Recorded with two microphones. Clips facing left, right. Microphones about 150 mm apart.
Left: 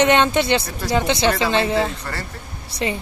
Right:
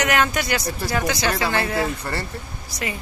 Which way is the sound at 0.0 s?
25° left (ahead or behind).